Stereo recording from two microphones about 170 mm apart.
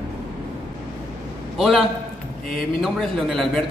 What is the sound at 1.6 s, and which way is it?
A man's voice, centre (ahead or behind).